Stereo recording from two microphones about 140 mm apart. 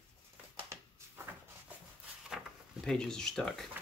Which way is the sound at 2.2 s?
Centre (ahead or behind).